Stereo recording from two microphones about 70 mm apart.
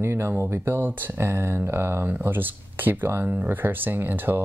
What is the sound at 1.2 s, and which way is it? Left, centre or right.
Speech, right.